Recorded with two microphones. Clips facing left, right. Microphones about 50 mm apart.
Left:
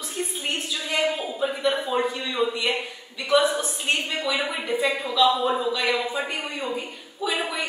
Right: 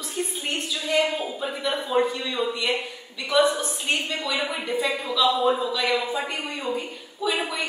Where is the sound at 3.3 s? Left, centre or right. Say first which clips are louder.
Even; centre.